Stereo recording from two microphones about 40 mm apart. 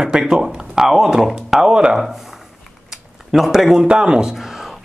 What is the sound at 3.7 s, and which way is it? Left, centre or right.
Speech, centre.